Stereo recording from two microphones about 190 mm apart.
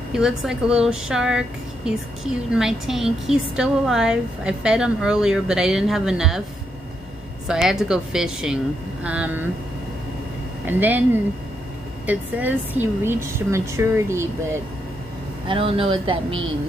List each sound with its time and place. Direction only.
0.1 s a woman's voice: 5° right (ahead or behind)
2.5 s a woman's voice: centre (ahead or behind)
7.4 s a woman's voice: centre (ahead or behind)
10.7 s a woman's voice: 10° right (ahead or behind)
12.1 s a woman's voice: 10° right (ahead or behind)
15.4 s speech: 30° right (ahead or behind)